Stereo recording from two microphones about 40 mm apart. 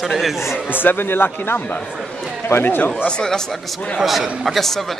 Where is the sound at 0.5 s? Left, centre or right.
Left.